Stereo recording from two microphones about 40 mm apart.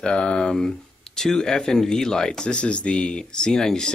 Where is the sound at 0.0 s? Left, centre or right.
Left.